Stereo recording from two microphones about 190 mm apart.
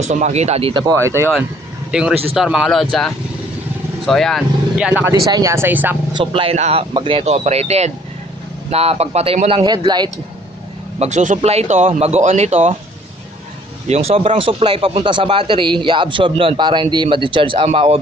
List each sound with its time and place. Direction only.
0.0 s speech: 35° right (ahead or behind)
0.9 s speech: 15° right (ahead or behind)
1.9 s speech: 5° right (ahead or behind)
6.1 s speech: 30° right (ahead or behind)
11.0 s speech: 40° right (ahead or behind)
13.8 s speech: 35° right (ahead or behind)